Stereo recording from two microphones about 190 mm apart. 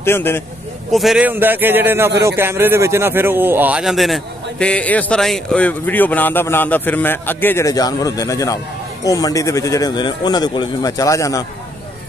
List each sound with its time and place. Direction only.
0.0 s speech: 10° left (ahead or behind)
0.9 s a man's voice: centre (ahead or behind); by 11.4 s 15° left (ahead or behind)